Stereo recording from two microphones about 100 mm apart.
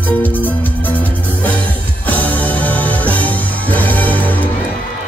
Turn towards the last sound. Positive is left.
turn(degrees=15)  # may be behind; listen again after turning